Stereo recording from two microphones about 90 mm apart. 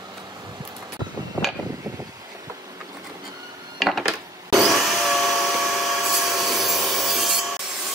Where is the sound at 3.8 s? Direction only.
Centre (ahead or behind).